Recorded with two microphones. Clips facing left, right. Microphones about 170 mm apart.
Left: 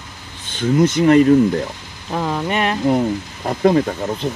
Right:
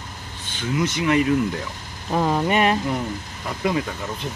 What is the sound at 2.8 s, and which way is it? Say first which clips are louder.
Speech: left 9 dB; 50° left (ahead or behind).